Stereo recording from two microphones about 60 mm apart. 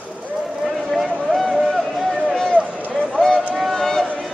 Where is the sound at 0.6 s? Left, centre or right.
Centre.